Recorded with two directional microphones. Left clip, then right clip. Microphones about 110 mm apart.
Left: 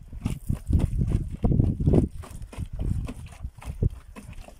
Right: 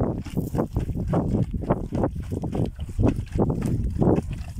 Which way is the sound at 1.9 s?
40° left (ahead or behind).